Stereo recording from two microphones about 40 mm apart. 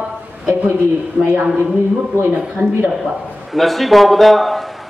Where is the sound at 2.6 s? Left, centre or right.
Right.